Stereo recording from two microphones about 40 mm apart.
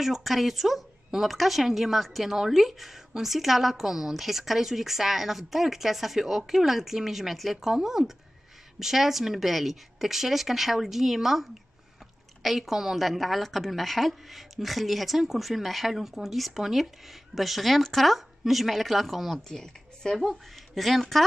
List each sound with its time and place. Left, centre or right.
0.0 s a woman's voice: centre
12.4 s a woman's voice: centre
19.5 s speech: centre
20.2 s a woman's voice: centre